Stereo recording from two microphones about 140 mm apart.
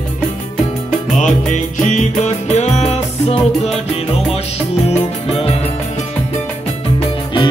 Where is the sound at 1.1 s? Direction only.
60° left (ahead or behind).